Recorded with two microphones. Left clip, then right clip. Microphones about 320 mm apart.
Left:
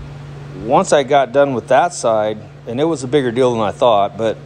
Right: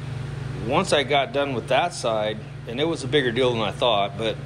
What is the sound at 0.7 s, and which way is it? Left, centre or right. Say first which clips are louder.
Speech: left 8 dB; centre.